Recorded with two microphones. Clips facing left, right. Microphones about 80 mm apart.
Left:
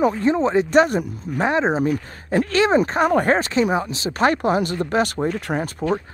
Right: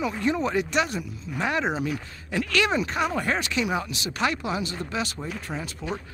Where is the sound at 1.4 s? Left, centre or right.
Left.